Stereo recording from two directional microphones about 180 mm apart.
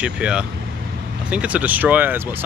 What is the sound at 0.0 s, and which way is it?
Speech, 5° right (ahead or behind).